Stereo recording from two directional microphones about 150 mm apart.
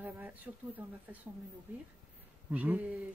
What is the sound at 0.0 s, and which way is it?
Speech, 10° right (ahead or behind).